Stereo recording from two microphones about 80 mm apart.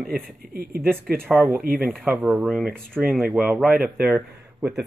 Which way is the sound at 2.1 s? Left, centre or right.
Right.